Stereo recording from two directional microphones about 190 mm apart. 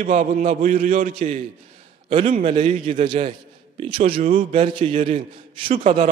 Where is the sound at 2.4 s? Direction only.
30° right (ahead or behind).